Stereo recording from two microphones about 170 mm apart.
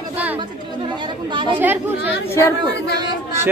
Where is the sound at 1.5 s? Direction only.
15° right (ahead or behind).